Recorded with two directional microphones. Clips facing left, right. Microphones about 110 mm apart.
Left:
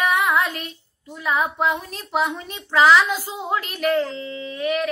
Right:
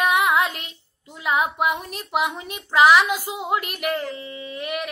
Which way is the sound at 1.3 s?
15° right (ahead or behind).